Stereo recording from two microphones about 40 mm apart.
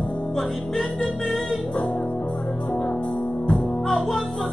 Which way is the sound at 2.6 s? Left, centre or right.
Left.